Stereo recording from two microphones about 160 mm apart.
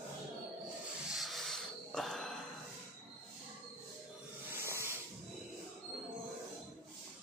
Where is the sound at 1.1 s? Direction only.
Centre (ahead or behind).